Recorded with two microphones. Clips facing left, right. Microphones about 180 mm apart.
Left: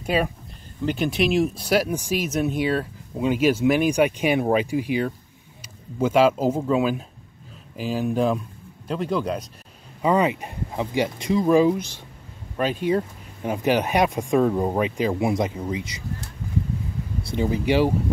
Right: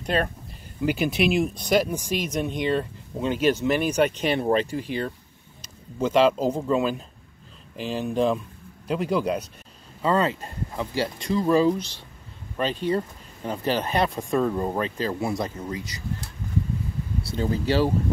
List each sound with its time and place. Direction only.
0.0 s speech: 10° left (ahead or behind)
0.8 s speech: 5° right (ahead or behind)
10.0 s speech: 15° left (ahead or behind)
17.3 s speech: 15° left (ahead or behind)